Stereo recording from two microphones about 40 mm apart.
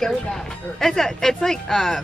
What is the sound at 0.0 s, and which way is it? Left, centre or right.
A woman's voice, centre.